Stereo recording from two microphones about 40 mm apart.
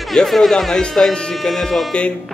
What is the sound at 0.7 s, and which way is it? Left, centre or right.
Speech, centre.